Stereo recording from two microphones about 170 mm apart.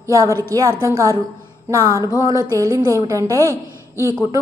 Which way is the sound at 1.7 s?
15° right (ahead or behind).